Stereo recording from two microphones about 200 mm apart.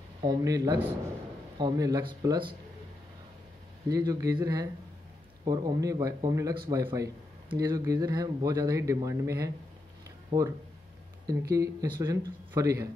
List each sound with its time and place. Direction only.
0.2 s speech: 20° right (ahead or behind)
3.9 s speech: 15° right (ahead or behind)